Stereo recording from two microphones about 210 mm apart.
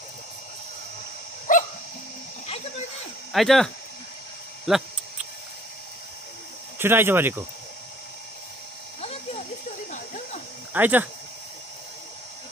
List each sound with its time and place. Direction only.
1.5 s dog: 40° left (ahead or behind)
3.3 s speech: centre (ahead or behind)
6.8 s speech: 10° right (ahead or behind)
9.0 s a sound: 30° left (ahead or behind)
10.7 s speech: 10° right (ahead or behind)